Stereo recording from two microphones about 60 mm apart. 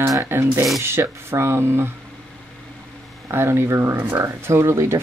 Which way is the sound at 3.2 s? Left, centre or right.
Right.